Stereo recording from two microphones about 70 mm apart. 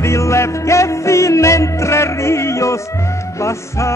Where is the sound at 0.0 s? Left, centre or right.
Left.